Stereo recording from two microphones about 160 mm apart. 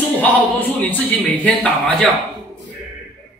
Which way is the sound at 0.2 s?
10° left (ahead or behind).